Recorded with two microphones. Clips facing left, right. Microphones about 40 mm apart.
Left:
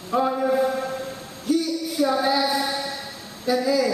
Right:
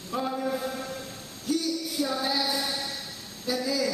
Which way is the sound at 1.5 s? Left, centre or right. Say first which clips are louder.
Left 5 dB; centre.